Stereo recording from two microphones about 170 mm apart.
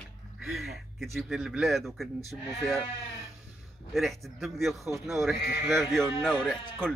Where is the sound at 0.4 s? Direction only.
Centre (ahead or behind).